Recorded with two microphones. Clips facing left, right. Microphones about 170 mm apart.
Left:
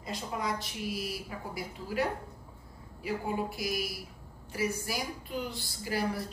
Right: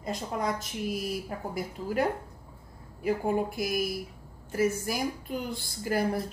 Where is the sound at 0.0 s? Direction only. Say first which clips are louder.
Right 4 dB; 50° right (ahead or behind).